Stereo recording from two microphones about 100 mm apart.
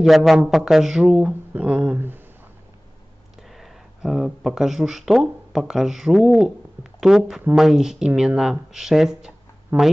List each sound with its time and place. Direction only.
0.0 s speech: centre (ahead or behind)
1.5 s a sound: 15° right (ahead or behind)
3.5 s speech: centre (ahead or behind)
9.7 s speech: 20° right (ahead or behind)